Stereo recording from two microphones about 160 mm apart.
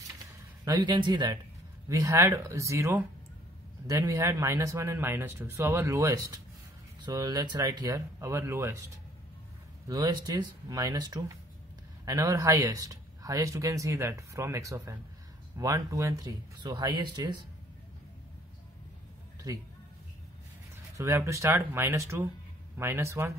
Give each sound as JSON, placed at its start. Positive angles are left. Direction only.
{"t": 0.7, "sound": "speech", "side_deg": -25}
{"t": 9.8, "sound": "speech", "side_deg": -25}
{"t": 21.0, "sound": "speech", "side_deg": -15}